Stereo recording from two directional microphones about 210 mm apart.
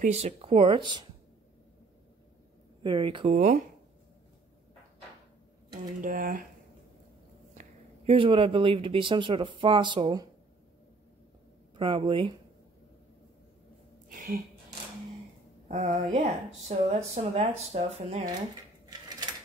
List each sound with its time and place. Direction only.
0.0 s speech: 30° right (ahead or behind)
2.8 s speech: 25° right (ahead or behind)
5.9 s speech: 40° right (ahead or behind)
8.1 s speech: 25° right (ahead or behind)
11.7 s speech: 25° right (ahead or behind)
14.0 s a sound: 40° right (ahead or behind)
15.7 s speech: 35° right (ahead or behind)
18.9 s a sound: 20° right (ahead or behind)